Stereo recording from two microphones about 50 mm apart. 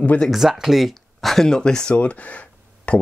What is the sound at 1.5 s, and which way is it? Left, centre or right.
Speech, centre.